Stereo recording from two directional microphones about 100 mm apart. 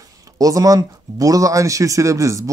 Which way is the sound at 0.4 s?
35° right (ahead or behind).